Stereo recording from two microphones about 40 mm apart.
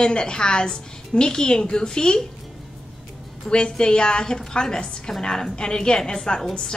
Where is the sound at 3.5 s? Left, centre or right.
Centre.